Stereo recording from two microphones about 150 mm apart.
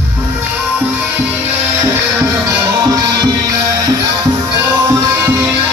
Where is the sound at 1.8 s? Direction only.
15° right (ahead or behind).